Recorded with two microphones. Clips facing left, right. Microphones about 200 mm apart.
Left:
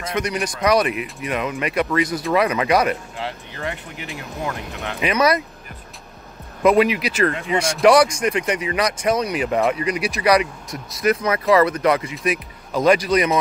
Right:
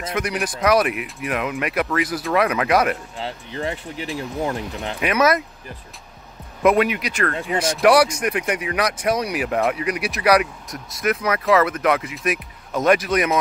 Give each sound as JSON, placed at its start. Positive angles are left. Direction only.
{"t": 0.2, "sound": "speech", "side_deg": -5}
{"t": 3.2, "sound": "speech", "side_deg": -30}
{"t": 5.0, "sound": "speech", "side_deg": -5}
{"t": 6.6, "sound": "speech", "side_deg": 0}